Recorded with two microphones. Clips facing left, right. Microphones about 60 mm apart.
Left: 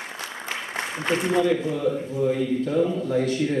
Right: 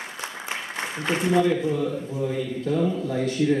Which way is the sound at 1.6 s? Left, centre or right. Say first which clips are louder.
Left 1 dB; left.